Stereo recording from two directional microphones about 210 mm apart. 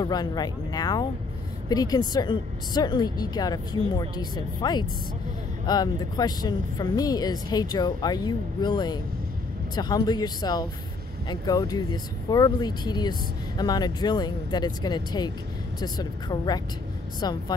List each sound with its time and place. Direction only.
0.0 s a woman's voice: 20° left (ahead or behind)